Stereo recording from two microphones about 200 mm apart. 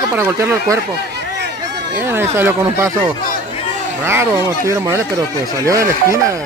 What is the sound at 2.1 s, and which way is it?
Speech, 10° right (ahead or behind).